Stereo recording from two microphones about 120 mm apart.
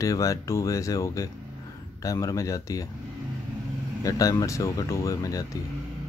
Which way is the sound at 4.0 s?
30° left (ahead or behind).